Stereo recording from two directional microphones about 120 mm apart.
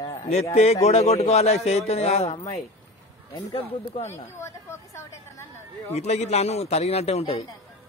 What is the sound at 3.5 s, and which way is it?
Speech, 55° left (ahead or behind).